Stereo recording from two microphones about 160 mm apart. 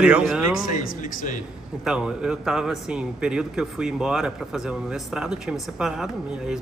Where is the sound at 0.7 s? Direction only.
50° left (ahead or behind).